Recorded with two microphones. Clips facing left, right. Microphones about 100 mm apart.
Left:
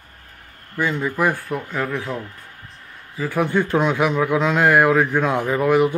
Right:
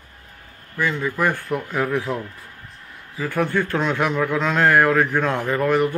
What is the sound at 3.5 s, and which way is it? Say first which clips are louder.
Speech: left 3 dB; 15° left (ahead or behind).